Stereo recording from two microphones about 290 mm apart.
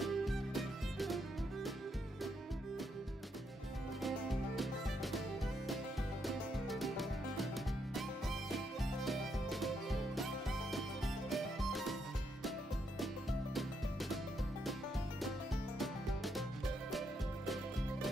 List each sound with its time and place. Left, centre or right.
0.0 s music: centre
4.0 s music: centre
6.2 s music: centre
13.0 s music: centre
15.8 s music: centre